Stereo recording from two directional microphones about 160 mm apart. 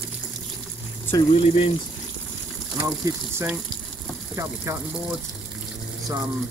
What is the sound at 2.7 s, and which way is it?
Speech, 20° right (ahead or behind).